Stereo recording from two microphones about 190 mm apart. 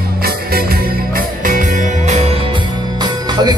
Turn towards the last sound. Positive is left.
turn(degrees=-20)  # may be behind; listen again after turning